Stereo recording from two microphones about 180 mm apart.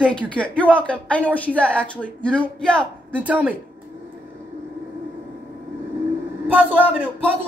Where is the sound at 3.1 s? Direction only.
10° right (ahead or behind).